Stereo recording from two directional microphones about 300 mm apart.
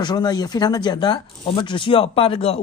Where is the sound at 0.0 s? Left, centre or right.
Centre.